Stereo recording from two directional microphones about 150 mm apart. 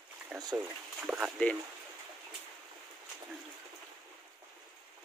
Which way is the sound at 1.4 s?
10° left (ahead or behind).